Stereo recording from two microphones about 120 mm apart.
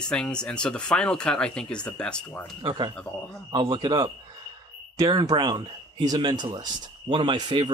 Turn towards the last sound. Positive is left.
turn(degrees=-40)  # may be behind; listen again after turning